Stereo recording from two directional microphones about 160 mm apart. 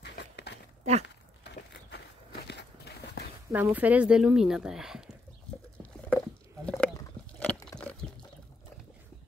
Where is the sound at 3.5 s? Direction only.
10° right (ahead or behind).